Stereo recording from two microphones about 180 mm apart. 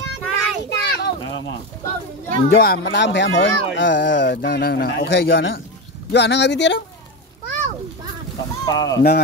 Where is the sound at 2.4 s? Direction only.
60° left (ahead or behind); by 6.8 s 75° left (ahead or behind).